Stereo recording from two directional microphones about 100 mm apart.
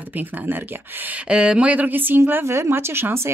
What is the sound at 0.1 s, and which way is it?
Speech, 20° right (ahead or behind).